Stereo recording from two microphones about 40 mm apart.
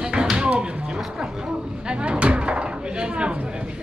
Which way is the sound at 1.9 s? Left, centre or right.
Right.